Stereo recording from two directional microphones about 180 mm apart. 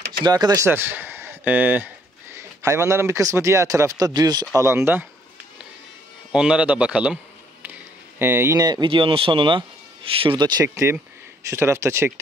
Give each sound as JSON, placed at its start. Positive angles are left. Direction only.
{"t": 0.2, "sound": "speech", "side_deg": -20}
{"t": 6.3, "sound": "speech", "side_deg": -5}
{"t": 8.2, "sound": "speech", "side_deg": -15}